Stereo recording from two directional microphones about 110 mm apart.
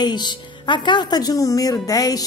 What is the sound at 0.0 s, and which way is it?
A woman's voice, 40° left (ahead or behind).